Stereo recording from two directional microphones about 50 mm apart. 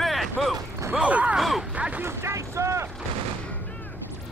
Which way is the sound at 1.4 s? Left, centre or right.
Centre.